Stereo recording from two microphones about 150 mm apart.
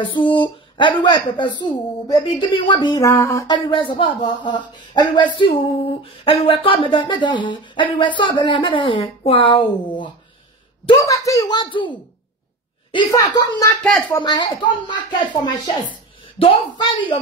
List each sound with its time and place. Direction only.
0.0 s speech: 35° left (ahead or behind)
10.9 s speech: 20° left (ahead or behind)
13.1 s speech: 20° left (ahead or behind)